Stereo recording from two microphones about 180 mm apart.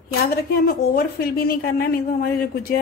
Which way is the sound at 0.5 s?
55° left (ahead or behind).